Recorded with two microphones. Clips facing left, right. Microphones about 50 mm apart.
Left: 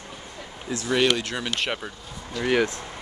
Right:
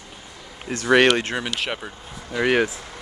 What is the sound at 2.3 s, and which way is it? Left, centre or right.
Speech, right.